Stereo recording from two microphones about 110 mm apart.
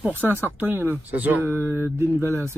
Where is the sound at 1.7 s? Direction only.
20° right (ahead or behind).